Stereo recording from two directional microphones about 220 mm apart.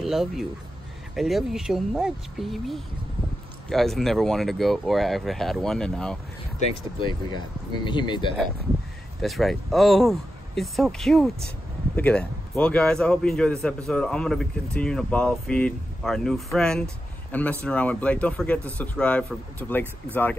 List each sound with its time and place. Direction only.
0.0 s speech: centre (ahead or behind)
7.0 s speech: 20° left (ahead or behind)
9.2 s speech: centre (ahead or behind)